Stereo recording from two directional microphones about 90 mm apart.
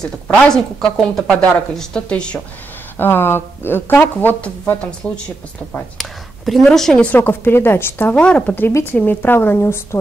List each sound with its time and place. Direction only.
0.0 s speech: 5° left (ahead or behind)
3.0 s speech: 25° left (ahead or behind)
5.7 s a woman's voice: centre (ahead or behind)
7.1 s speech: 20° left (ahead or behind)